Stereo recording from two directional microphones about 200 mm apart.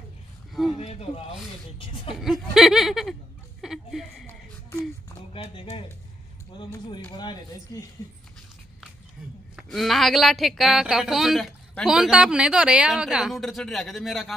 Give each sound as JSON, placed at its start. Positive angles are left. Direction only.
{"t": 0.5, "sound": "a sound", "side_deg": 0}
{"t": 0.7, "sound": "speech", "side_deg": 30}
{"t": 2.0, "sound": "speech", "side_deg": 0}
{"t": 3.6, "sound": "a sound", "side_deg": 0}
{"t": 5.3, "sound": "speech", "side_deg": 25}
{"t": 9.2, "sound": "speech", "side_deg": 0}